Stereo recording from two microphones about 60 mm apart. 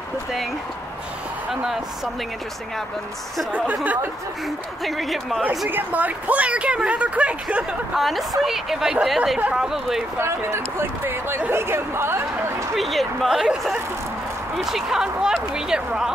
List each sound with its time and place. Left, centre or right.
1.5 s speech: centre
4.8 s speech: centre
5.7 s speech: right
7.9 s speech: centre
10.1 s speech: right
12.7 s speech: centre